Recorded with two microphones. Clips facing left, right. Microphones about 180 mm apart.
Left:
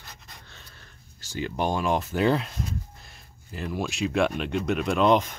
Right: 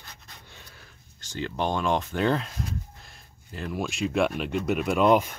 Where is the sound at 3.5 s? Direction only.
Centre (ahead or behind).